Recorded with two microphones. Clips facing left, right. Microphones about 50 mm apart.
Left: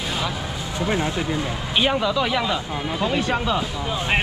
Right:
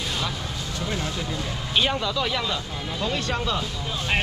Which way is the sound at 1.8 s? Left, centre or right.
Centre.